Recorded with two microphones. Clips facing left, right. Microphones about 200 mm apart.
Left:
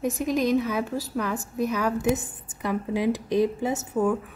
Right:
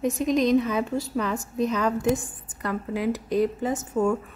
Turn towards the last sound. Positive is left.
turn(degrees=5)  # may be behind; listen again after turning